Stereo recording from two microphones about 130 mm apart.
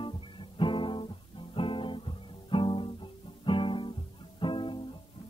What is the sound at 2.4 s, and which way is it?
Music, 40° left (ahead or behind).